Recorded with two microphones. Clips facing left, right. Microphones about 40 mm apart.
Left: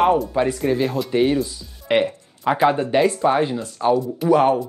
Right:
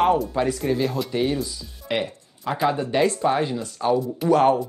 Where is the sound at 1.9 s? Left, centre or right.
Left.